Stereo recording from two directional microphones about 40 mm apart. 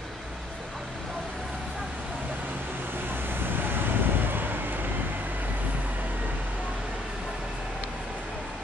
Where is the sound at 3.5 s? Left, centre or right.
Right.